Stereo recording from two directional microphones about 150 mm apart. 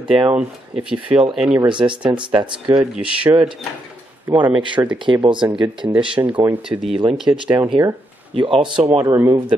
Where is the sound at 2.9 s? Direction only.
10° right (ahead or behind).